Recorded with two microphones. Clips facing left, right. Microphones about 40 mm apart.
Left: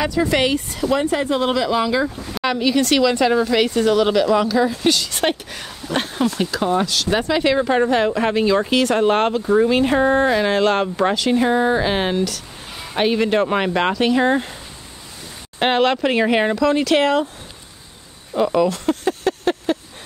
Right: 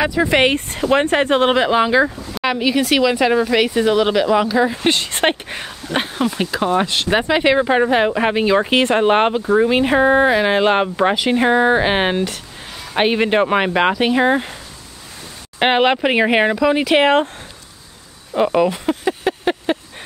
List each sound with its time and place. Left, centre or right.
0.0 s speech: right
2.4 s speech: centre
4.8 s speech: right
5.3 s speech: right
5.9 s speech: centre
15.6 s speech: right
18.3 s a sound: right